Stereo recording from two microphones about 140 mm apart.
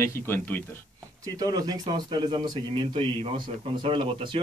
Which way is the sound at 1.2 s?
25° right (ahead or behind).